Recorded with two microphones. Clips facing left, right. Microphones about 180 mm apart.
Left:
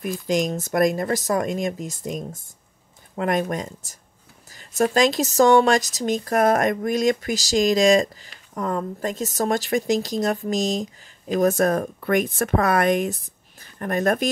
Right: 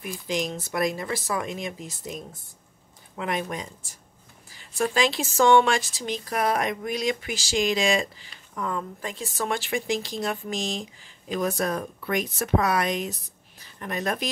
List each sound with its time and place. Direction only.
0.0 s speech: 45° left (ahead or behind)